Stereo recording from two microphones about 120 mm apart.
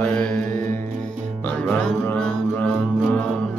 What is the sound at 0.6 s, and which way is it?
Music, 15° left (ahead or behind).